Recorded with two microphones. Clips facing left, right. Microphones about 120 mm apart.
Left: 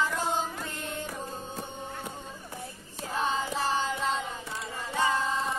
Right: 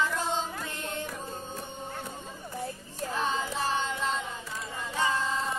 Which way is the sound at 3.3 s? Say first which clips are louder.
Left 2 dB; 5° left (ahead or behind).